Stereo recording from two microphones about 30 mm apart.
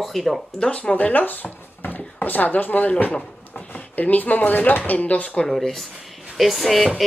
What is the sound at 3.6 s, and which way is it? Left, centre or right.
Speech, left.